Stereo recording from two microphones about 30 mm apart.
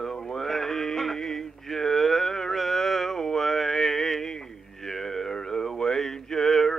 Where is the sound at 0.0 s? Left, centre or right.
Centre.